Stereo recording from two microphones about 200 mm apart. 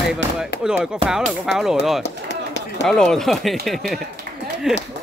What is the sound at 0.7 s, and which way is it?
Speech, 5° right (ahead or behind).